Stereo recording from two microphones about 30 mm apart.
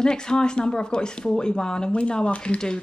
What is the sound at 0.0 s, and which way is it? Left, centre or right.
Speech, left.